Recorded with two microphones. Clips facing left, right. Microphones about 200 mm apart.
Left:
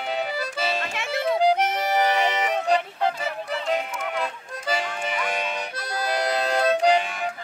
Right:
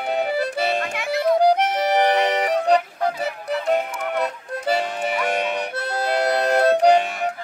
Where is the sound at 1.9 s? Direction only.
60° right (ahead or behind).